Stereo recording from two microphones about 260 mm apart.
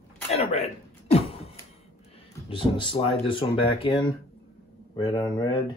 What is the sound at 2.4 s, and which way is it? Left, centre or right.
Speech, centre.